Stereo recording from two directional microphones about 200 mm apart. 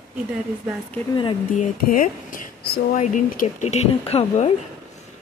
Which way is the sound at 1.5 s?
40° left (ahead or behind).